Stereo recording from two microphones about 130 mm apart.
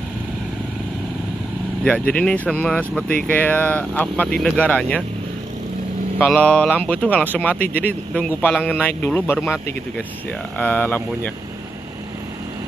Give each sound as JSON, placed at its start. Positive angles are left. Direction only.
{"t": 1.9, "sound": "speech", "side_deg": 10}
{"t": 6.1, "sound": "speech", "side_deg": 10}
{"t": 7.5, "sound": "speech", "side_deg": 90}
{"t": 7.8, "sound": "speech", "side_deg": 10}
{"t": 10.6, "sound": "speech", "side_deg": 15}